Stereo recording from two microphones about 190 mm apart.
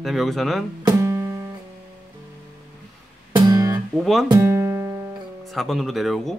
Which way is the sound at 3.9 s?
Centre (ahead or behind).